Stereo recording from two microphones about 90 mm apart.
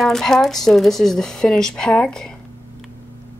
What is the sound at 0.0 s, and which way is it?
Speech, 5° left (ahead or behind).